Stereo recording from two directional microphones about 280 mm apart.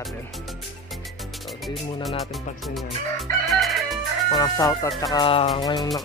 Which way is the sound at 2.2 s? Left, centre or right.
Centre.